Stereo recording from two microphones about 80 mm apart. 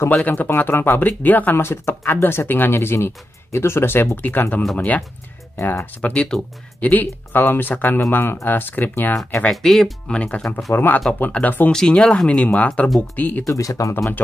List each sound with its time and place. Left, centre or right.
0.2 s speech: centre
9.5 s speech: centre
10.1 s speech: centre
10.7 s speech: left
11.7 s speech: centre
13.5 s speech: left